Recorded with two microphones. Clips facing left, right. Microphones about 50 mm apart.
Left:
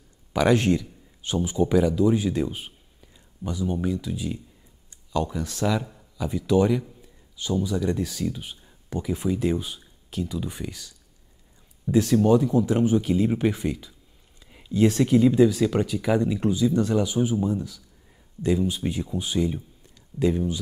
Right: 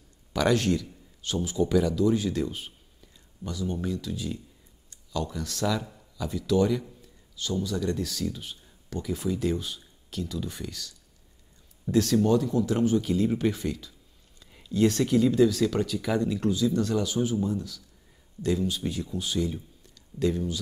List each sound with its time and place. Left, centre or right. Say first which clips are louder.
0.3 s speech: left 4 dB; centre